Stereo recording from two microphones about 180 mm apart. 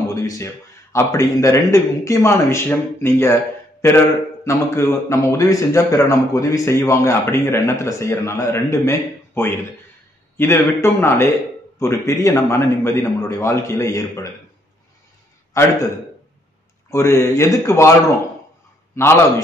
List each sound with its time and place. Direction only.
0.1 s a man's voice: 20° left (ahead or behind)
4.5 s a man's voice: 15° left (ahead or behind)
15.5 s a man's voice: 15° left (ahead or behind)
16.9 s a man's voice: 15° left (ahead or behind)
18.9 s a man's voice: 15° left (ahead or behind)